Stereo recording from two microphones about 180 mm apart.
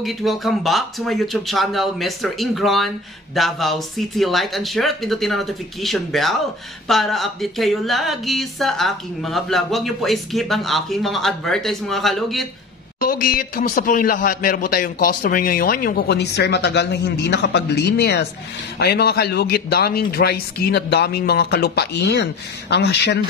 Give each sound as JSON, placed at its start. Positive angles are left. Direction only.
{"t": 0.0, "sound": "speech", "side_deg": 0}
{"t": 13.0, "sound": "a man's voice", "side_deg": 50}